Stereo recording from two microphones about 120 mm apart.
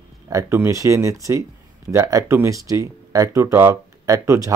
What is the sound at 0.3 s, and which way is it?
Speech, 25° right (ahead or behind).